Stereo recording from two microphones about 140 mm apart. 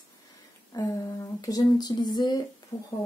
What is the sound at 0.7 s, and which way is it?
Humming, 25° left (ahead or behind).